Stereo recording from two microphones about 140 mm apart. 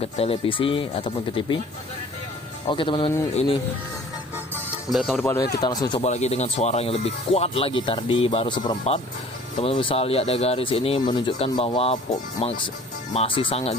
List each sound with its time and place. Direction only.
0.0 s speech: 45° left (ahead or behind)
2.7 s speech: 35° left (ahead or behind)
4.9 s speech: centre (ahead or behind)
5.3 s speech: 25° left (ahead or behind)
6.0 s speech: 55° left (ahead or behind)